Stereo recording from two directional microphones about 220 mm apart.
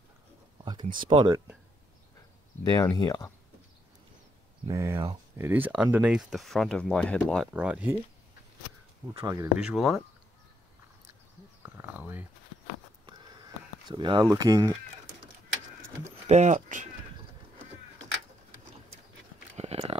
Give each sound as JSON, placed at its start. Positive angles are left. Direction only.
{"t": 1.0, "sound": "speech", "side_deg": -20}
{"t": 2.6, "sound": "speech", "side_deg": 15}
{"t": 4.6, "sound": "speech", "side_deg": -15}
{"t": 7.5, "sound": "speech", "side_deg": -5}
{"t": 9.1, "sound": "speech", "side_deg": -15}
{"t": 9.6, "sound": "speech", "side_deg": 0}
{"t": 11.6, "sound": "a sound", "side_deg": -10}
{"t": 13.8, "sound": "speech", "side_deg": -20}
{"t": 16.3, "sound": "speech", "side_deg": -30}
{"t": 19.5, "sound": "a sound", "side_deg": -30}